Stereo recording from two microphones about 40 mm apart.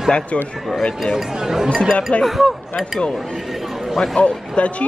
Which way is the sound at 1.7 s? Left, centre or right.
Centre.